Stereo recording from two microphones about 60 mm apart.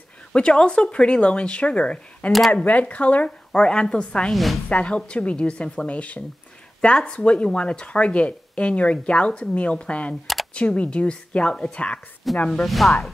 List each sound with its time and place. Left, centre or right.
0.3 s speech: centre
4.3 s speech: centre
4.6 s speech: left
12.2 s speech: centre